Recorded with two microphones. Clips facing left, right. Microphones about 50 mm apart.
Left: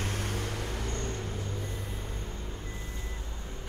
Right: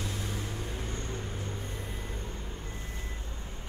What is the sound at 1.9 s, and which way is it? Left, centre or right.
Vehicle, centre.